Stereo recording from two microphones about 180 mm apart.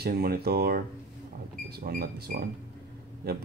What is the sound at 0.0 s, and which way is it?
Speech, 60° right (ahead or behind).